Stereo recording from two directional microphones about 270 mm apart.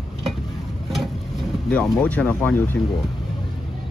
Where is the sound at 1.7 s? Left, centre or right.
Centre.